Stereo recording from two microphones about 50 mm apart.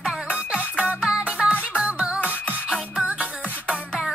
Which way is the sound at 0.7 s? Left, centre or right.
Left.